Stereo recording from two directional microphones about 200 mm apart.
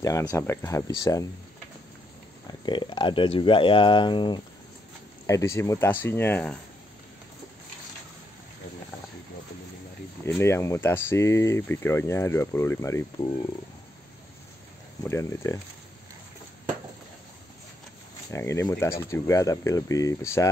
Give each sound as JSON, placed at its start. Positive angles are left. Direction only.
{"t": 0.0, "sound": "speech", "side_deg": 15}
{"t": 2.6, "sound": "speech", "side_deg": 25}
{"t": 10.2, "sound": "speech", "side_deg": 10}
{"t": 15.0, "sound": "speech", "side_deg": 15}
{"t": 18.3, "sound": "speech", "side_deg": 15}